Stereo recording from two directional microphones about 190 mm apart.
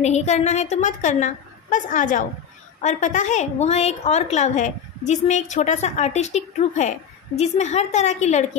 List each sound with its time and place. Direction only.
0.0 s a woman's voice: 35° left (ahead or behind)